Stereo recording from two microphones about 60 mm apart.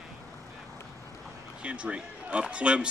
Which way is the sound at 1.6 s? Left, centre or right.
Right.